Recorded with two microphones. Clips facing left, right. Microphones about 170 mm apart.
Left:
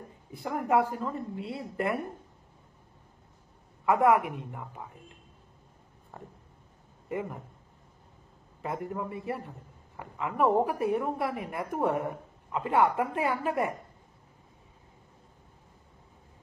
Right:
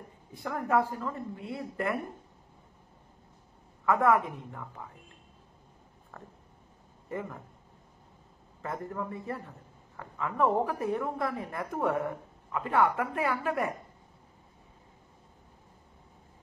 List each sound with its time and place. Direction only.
0.4 s a woman's voice: 20° left (ahead or behind)
3.8 s a woman's voice: 20° left (ahead or behind)
6.1 s a woman's voice: 15° left (ahead or behind)
8.6 s a woman's voice: 15° left (ahead or behind)